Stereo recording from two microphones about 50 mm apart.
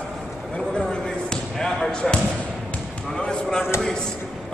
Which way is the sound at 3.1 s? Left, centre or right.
Centre.